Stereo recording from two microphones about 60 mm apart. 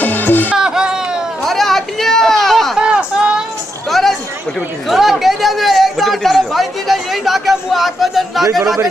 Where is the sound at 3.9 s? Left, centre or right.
Centre.